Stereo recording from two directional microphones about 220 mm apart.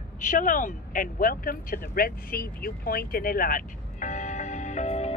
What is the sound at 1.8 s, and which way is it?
Vehicle, 40° left (ahead or behind).